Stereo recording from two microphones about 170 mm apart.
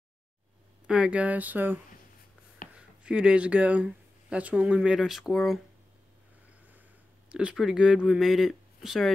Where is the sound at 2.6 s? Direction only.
55° left (ahead or behind).